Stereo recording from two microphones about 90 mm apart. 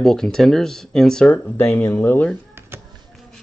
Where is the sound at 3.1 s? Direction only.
Centre (ahead or behind).